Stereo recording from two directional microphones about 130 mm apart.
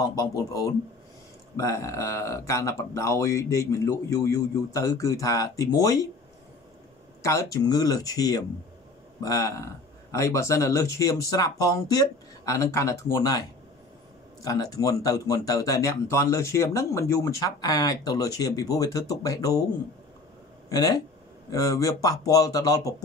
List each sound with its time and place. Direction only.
0.0 s speech: 30° left (ahead or behind)
7.2 s speech: 25° left (ahead or behind)
20.7 s speech: 25° left (ahead or behind)